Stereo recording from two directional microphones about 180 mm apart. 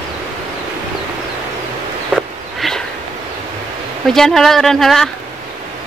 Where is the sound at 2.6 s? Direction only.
Centre (ahead or behind).